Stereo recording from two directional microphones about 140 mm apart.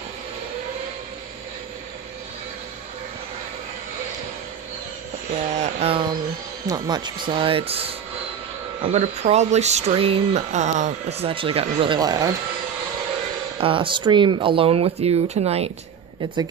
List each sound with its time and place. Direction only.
5.3 s a sound: 45° right (ahead or behind)
6.7 s speech: 30° right (ahead or behind)
12.0 s speech: 25° right (ahead or behind)
13.6 s speech: 40° right (ahead or behind)